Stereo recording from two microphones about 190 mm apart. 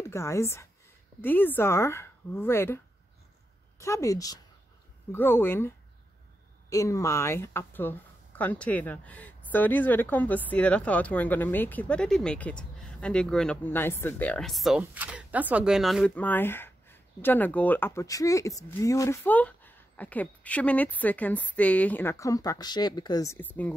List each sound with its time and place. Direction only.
0.0 s speech: 15° left (ahead or behind)
3.8 s speech: 15° left (ahead or behind)
6.7 s speech: 15° left (ahead or behind)